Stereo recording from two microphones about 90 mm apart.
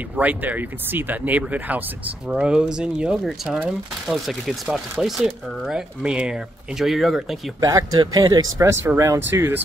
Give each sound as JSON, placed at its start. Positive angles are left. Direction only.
{"t": 0.2, "sound": "speech", "side_deg": -20}
{"t": 7.6, "sound": "speech", "side_deg": -45}
{"t": 8.5, "sound": "speech", "side_deg": -30}